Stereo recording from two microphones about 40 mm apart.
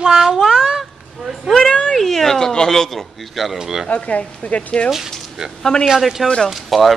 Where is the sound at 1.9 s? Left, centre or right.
Centre.